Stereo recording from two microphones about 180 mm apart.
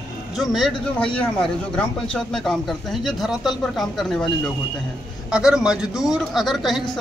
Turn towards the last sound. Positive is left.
turn(degrees=0)  # may be behind; listen again after turning